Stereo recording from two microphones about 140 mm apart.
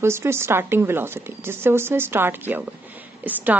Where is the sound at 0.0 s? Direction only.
20° right (ahead or behind).